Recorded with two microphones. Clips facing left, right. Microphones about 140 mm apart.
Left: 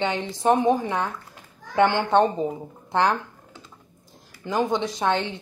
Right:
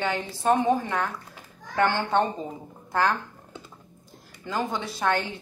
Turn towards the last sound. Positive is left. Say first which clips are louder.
# left 2 dB
turn(degrees=20)  # may be behind; listen again after turning